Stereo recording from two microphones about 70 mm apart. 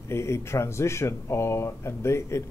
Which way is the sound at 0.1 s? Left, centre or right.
Left.